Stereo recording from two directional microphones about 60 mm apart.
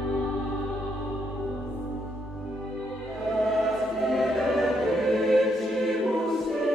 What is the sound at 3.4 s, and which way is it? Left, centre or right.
Choir, centre.